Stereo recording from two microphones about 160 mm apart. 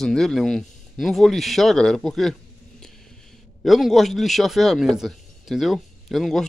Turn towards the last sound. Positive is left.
turn(degrees=0)  # may be behind; listen again after turning